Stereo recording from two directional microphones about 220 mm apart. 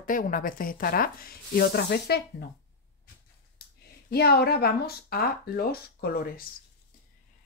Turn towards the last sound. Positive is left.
turn(degrees=45)  # may be behind; listen again after turning